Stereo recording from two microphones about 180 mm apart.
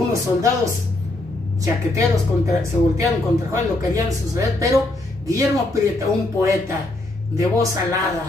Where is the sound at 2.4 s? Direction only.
15° right (ahead or behind).